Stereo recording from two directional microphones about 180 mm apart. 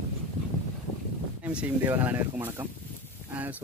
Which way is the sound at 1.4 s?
10° right (ahead or behind).